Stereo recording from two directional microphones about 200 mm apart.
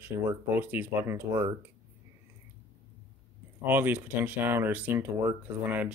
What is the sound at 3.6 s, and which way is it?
Speech, 10° right (ahead or behind).